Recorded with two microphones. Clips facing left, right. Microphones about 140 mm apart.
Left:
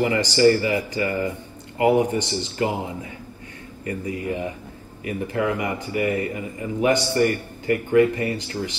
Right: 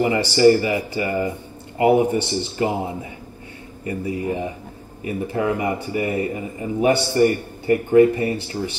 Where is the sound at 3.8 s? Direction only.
30° right (ahead or behind).